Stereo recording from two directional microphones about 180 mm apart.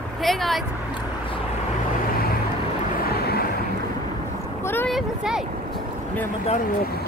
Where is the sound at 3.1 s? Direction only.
60° left (ahead or behind).